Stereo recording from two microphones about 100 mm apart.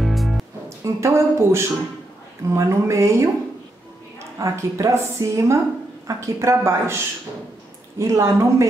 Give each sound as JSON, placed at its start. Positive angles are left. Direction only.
{"t": 0.0, "sound": "music", "side_deg": 0}
{"t": 0.7, "sound": "a woman's voice", "side_deg": -30}
{"t": 4.4, "sound": "a woman's voice", "side_deg": -35}
{"t": 8.0, "sound": "a woman's voice", "side_deg": -30}